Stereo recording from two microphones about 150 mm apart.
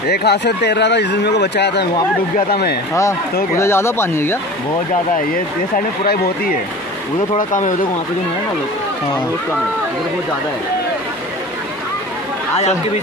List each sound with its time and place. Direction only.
0.1 s speech: 90° left
2.9 s speech: 20° left (ahead or behind)
5.3 s speech: 80° left
7.3 s speech: 60° left (ahead or behind)